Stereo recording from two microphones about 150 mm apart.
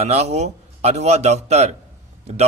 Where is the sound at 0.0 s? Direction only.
45° right (ahead or behind).